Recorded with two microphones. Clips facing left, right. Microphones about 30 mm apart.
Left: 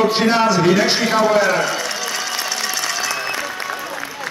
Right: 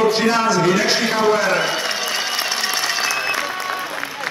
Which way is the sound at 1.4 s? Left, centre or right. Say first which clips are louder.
Even; right.